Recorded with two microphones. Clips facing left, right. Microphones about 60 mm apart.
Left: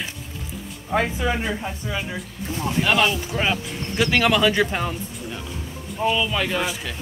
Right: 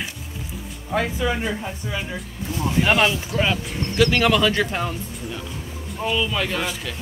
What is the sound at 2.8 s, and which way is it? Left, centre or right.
Speech, right.